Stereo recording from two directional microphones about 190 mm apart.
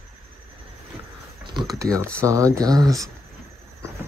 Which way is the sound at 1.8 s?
15° right (ahead or behind).